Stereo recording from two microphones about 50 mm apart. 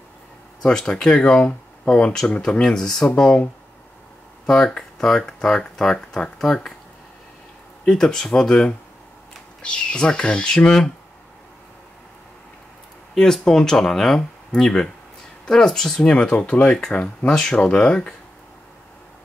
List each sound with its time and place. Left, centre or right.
0.6 s speech: centre
4.5 s speech: centre
7.8 s speech: centre
13.1 s speech: centre
16.6 s speech: centre
16.9 s speech: left
17.3 s speech: centre